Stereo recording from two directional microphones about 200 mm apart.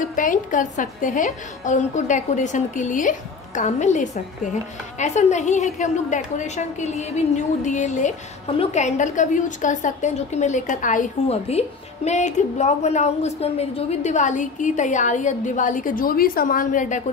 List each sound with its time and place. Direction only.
0.0 s a woman's voice: 40° left (ahead or behind)